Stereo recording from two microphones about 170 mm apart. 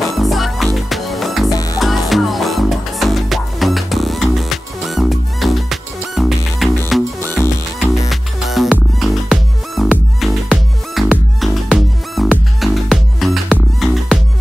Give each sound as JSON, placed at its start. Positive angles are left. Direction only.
{"t": 0.0, "sound": "music", "side_deg": 0}
{"t": 1.5, "sound": "music", "side_deg": 20}
{"t": 1.8, "sound": "music", "side_deg": 0}
{"t": 7.2, "sound": "music", "side_deg": 15}
{"t": 8.1, "sound": "music", "side_deg": 0}